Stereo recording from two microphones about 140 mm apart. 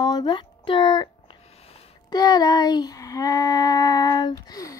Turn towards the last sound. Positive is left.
turn(degrees=25)  # may be behind; listen again after turning